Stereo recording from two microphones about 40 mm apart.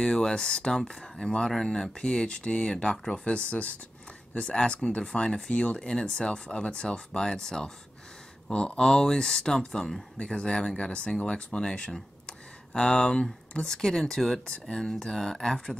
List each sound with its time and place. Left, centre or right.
0.0 s speech: centre
12.3 s a sound: left
13.7 s speech: centre